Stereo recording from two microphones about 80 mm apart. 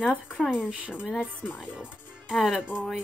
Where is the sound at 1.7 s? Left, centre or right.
Centre.